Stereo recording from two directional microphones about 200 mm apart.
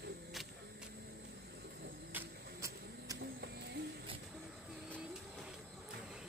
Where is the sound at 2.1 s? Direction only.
15° right (ahead or behind).